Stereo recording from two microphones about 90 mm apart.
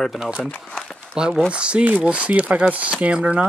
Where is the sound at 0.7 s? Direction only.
5° left (ahead or behind).